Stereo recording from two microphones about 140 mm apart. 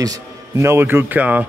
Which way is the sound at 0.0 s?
25° right (ahead or behind).